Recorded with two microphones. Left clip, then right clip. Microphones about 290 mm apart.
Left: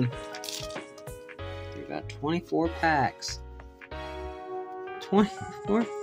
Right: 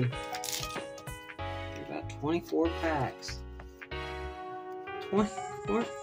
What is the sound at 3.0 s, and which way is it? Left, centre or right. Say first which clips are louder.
Speech: left 7 dB; left.